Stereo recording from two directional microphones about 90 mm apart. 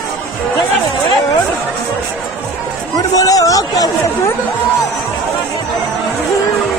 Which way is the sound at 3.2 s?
40° left (ahead or behind).